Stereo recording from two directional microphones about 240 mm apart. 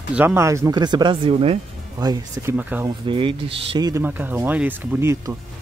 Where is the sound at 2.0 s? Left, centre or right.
Centre.